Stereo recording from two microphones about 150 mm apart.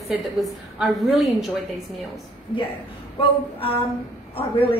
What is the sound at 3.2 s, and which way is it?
A woman's voice, 40° left (ahead or behind).